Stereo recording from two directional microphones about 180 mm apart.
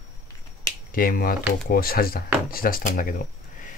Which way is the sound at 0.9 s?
55° left (ahead or behind).